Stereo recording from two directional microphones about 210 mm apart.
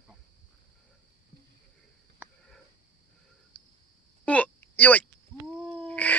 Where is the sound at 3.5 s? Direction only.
5° left (ahead or behind).